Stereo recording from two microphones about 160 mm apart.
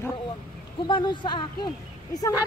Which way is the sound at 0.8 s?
30° left (ahead or behind).